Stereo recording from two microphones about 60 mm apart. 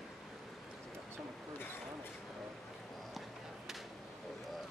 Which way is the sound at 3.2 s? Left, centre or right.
Centre.